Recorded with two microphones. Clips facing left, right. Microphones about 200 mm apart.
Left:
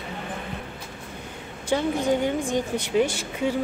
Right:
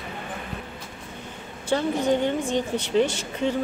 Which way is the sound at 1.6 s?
10° left (ahead or behind).